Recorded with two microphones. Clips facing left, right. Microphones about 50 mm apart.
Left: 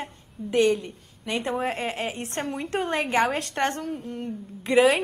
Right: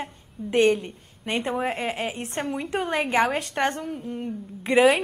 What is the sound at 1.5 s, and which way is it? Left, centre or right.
A woman's voice, centre.